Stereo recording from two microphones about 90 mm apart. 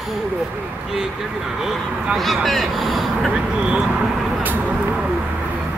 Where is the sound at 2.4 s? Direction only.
Centre (ahead or behind).